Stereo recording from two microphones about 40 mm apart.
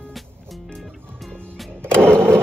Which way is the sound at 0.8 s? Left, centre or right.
Centre.